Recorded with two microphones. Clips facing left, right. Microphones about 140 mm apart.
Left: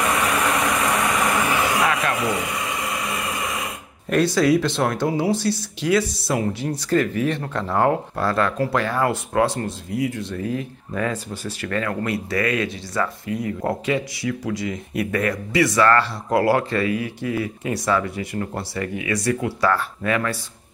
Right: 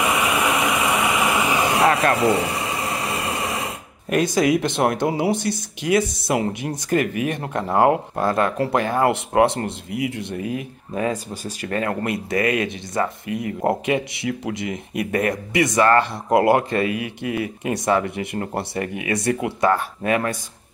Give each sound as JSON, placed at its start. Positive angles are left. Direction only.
{"t": 0.0, "sound": "vehicle", "side_deg": -5}
{"t": 1.8, "sound": "a sound", "side_deg": -30}
{"t": 4.1, "sound": "speech", "side_deg": -15}